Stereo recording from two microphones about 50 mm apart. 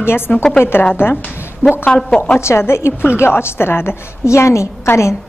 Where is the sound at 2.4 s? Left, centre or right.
Left.